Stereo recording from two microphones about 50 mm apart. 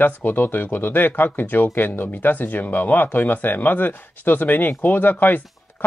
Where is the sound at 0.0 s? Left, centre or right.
Left.